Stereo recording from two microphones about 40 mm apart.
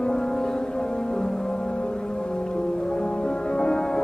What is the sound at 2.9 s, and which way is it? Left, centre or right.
Music, left.